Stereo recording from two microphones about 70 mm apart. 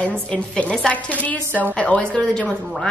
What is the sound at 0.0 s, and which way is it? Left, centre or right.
A woman's voice, centre.